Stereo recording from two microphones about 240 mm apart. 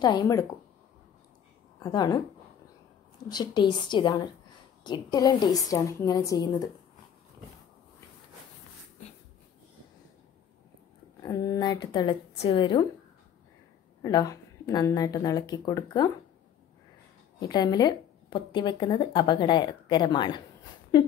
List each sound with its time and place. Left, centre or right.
0.0 s speech: centre
1.8 s speech: centre
3.3 s speech: centre
11.2 s speech: centre
14.0 s speech: centre
17.4 s speech: centre